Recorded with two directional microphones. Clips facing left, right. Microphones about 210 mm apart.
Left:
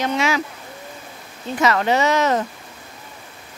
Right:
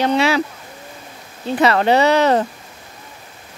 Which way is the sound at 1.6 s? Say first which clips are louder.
Right 4 dB; 30° right (ahead or behind).